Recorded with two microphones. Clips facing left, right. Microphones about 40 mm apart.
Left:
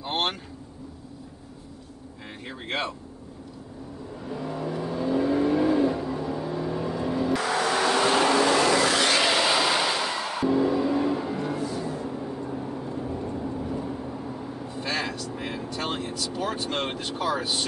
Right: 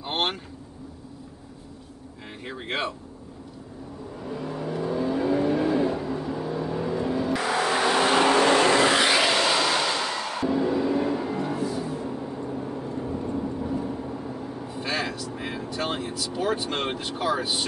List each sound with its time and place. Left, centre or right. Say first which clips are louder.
0.0 s speech: even; centre
2.4 s speech: right 1 dB; centre
4.2 s vehicle: even; centre
8.4 s vehicle: right 2 dB; right
9.0 s vehicle: right 1 dB; centre
9.3 s music: even; centre